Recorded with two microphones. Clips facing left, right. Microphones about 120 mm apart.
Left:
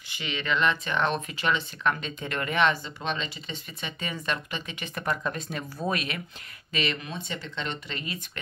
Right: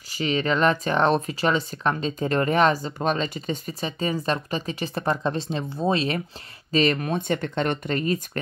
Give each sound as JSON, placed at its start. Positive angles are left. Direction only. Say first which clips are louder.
{"t": 0.1, "sound": "speech", "louder": "right 7 dB", "side_deg": -40}